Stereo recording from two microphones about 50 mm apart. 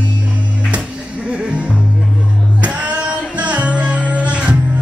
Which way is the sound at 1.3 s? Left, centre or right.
Right.